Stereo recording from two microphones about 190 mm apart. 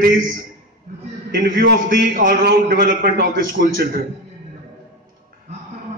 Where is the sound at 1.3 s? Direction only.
50° right (ahead or behind).